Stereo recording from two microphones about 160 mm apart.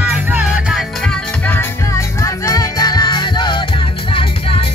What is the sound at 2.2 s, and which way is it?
Music, 20° left (ahead or behind).